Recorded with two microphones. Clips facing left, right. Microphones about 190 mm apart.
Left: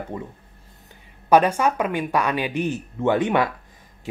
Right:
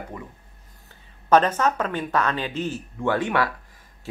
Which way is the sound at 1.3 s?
10° left (ahead or behind).